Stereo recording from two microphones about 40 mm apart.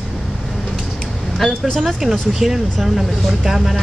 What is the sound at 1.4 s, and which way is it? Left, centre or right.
Speech, centre.